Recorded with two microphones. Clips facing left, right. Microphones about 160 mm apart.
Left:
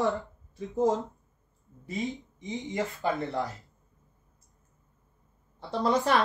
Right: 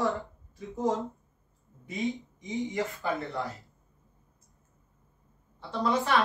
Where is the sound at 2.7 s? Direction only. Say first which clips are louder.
Left 6 dB; 20° left (ahead or behind).